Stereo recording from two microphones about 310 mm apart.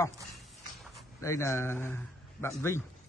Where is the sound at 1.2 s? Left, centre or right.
Centre.